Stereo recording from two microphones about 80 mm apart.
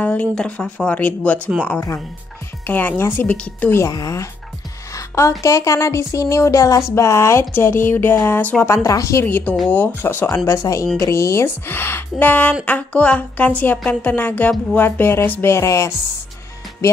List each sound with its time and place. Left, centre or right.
0.0 s speech: centre
2.6 s a woman's voice: left
3.8 s speech: left
4.9 s music: left
5.4 s speech: left
8.6 s speech: left
9.2 s a woman's voice: left
15.5 s speech: left